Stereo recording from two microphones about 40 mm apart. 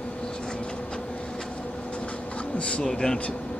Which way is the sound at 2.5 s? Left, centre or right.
Left.